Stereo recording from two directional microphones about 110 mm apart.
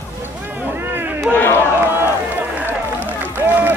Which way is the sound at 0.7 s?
20° right (ahead or behind).